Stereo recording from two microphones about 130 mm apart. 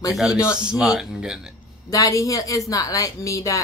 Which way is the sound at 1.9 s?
25° left (ahead or behind).